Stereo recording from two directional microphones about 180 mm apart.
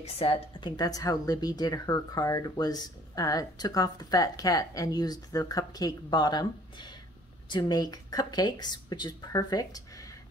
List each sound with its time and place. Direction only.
0.0 s a woman's voice: 30° left (ahead or behind)